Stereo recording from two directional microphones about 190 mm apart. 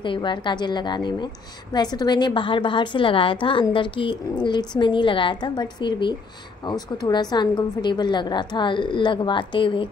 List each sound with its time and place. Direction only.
0.0 s a woman's voice: 25° left (ahead or behind)